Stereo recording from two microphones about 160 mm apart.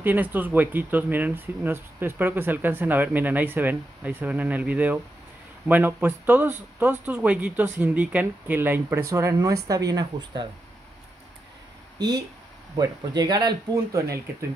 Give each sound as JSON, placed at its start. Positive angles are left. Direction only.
{"t": 0.0, "sound": "speech", "side_deg": -10}
{"t": 12.7, "sound": "speech", "side_deg": -25}